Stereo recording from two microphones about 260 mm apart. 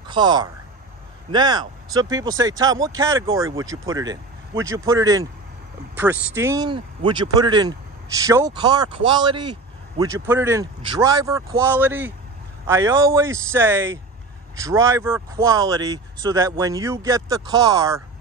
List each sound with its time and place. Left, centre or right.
0.1 s speech: centre